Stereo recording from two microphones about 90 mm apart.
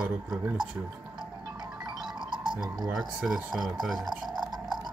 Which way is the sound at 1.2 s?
55° right (ahead or behind).